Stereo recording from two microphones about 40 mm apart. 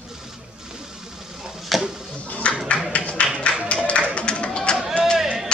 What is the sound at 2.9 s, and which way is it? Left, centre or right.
Music, left.